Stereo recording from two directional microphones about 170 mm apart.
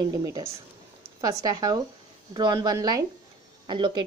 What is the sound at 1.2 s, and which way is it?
Speech, 20° right (ahead or behind).